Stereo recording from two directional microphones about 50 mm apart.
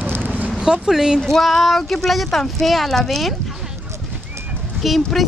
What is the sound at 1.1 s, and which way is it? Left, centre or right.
Speech, centre.